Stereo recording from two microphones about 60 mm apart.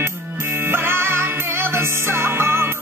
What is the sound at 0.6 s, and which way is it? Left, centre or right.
Music, right.